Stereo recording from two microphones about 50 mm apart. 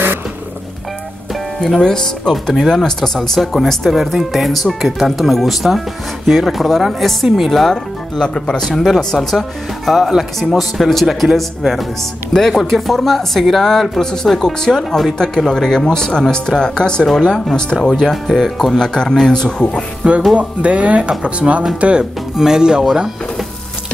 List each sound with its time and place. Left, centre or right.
1.8 s speech: centre
7.6 s speech: centre
20.0 s speech: right
22.3 s speech: centre